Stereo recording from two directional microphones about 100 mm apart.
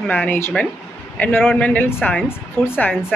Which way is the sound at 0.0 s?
15° left (ahead or behind).